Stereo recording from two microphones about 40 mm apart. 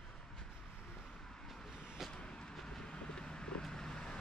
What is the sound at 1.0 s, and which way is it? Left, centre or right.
Vehicle, centre.